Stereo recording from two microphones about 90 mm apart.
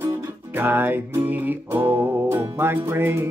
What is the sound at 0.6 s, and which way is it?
Music, 20° right (ahead or behind).